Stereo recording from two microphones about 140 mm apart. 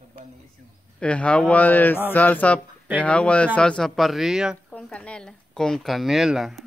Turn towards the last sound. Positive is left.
turn(degrees=0)  # may be behind; listen again after turning